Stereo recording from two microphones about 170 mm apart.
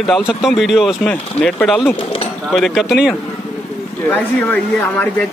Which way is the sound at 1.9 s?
35° left (ahead or behind).